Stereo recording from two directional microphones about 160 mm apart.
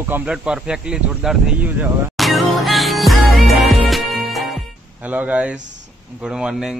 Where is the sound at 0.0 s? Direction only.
10° right (ahead or behind).